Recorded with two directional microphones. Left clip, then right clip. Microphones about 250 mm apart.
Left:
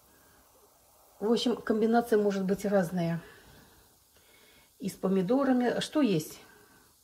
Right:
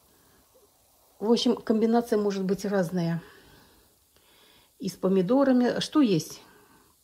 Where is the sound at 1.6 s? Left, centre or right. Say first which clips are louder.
Right 2 dB; centre.